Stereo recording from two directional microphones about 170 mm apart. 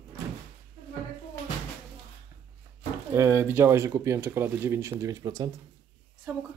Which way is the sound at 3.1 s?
15° right (ahead or behind).